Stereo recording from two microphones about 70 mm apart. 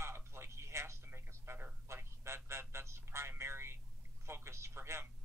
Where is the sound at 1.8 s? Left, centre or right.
Right.